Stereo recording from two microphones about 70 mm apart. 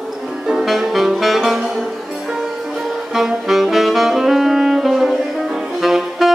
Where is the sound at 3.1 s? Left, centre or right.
Centre.